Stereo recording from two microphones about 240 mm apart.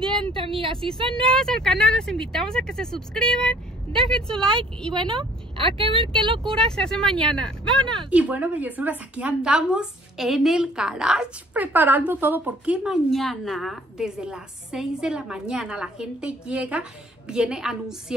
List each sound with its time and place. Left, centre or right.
0.2 s speech: right
1.2 s a woman's voice: centre
4.9 s speech: right
6.4 s a woman's voice: centre